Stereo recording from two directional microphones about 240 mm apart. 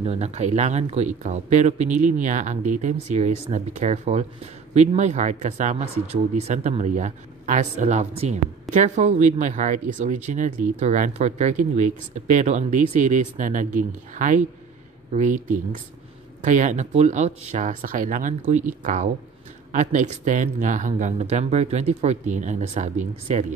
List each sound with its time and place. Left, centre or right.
0.0 s speech: right
19.7 s speech: right